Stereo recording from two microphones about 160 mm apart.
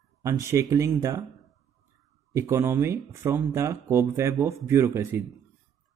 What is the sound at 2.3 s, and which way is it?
Speech, 20° right (ahead or behind).